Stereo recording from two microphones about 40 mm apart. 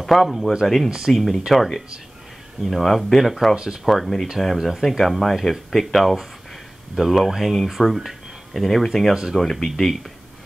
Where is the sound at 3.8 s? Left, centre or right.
Centre.